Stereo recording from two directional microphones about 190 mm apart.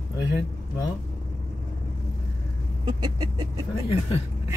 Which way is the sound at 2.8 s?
20° right (ahead or behind).